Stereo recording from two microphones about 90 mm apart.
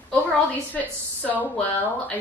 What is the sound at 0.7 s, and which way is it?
Speech, 15° left (ahead or behind).